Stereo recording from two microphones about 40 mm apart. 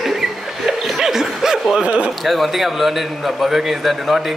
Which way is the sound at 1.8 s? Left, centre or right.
Right.